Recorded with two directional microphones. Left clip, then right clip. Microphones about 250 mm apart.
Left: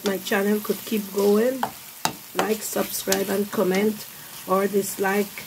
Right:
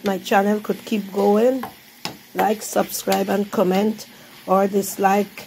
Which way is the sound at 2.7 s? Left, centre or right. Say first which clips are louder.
Right 5 dB; centre.